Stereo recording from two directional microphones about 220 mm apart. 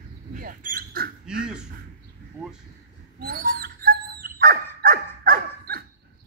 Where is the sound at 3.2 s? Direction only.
40° right (ahead or behind).